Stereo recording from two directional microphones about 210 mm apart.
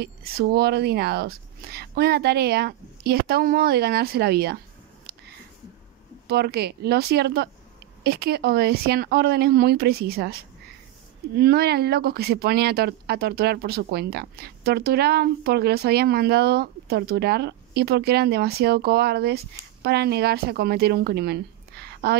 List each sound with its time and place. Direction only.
0.0 s speech: 45° right (ahead or behind)
6.2 s speech: 50° right (ahead or behind)
11.3 s speech: 50° right (ahead or behind)